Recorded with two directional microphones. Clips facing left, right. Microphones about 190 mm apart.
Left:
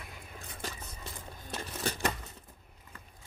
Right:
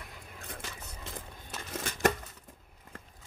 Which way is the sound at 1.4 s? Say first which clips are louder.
Left 3 dB; 35° left (ahead or behind).